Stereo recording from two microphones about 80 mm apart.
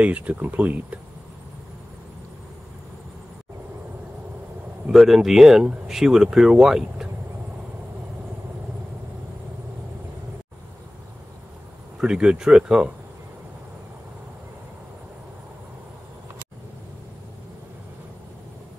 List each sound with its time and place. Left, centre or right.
0.0 s speech: centre
4.8 s speech: centre
12.0 s speech: centre